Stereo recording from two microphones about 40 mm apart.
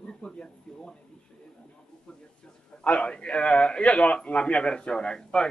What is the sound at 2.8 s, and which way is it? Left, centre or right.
A man's voice, left.